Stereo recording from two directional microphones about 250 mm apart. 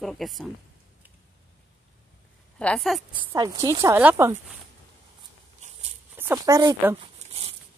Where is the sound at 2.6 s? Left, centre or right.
Centre.